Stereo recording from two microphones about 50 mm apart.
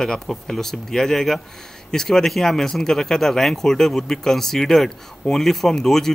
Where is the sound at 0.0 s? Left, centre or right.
Centre.